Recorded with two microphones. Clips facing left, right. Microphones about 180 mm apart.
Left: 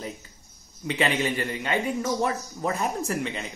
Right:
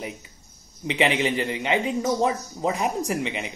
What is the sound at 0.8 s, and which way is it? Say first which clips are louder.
Speech: right 3 dB; 15° right (ahead or behind).